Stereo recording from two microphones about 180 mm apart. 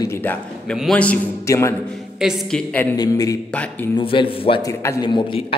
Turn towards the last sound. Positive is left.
turn(degrees=30)  # may be behind; listen again after turning